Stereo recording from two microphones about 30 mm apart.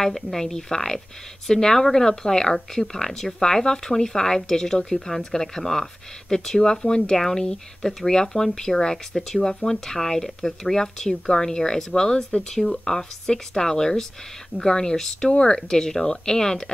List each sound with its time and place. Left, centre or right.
0.0 s a woman's voice: centre
8.9 s a woman's voice: centre; by 12.2 s left
12.4 s a woman's voice: centre